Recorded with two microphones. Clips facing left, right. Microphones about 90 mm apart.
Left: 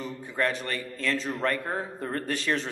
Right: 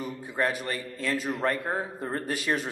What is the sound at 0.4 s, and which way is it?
A man's voice, 15° right (ahead or behind).